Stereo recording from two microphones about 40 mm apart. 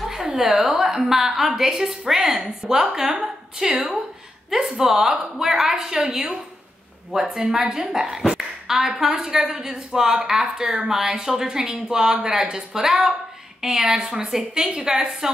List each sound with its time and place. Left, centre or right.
0.0 s a sound: centre
1.0 s a woman's voice: centre
7.4 s a woman's voice: right
7.7 s a woman's voice: centre